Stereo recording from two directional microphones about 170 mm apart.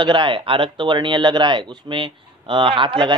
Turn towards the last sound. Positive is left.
turn(degrees=-30)  # may be behind; listen again after turning